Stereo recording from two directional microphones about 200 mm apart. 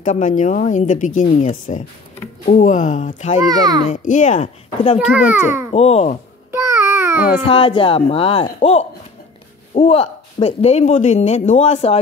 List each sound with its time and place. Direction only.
0.0 s speech: 40° left (ahead or behind)
3.4 s a child's voice: 20° right (ahead or behind)
3.9 s speech: 40° left (ahead or behind)
4.9 s a child's voice: 5° right (ahead or behind)
5.7 s speech: 30° left (ahead or behind)
6.5 s babbling: 15° right (ahead or behind)
7.4 s speech: 25° left (ahead or behind)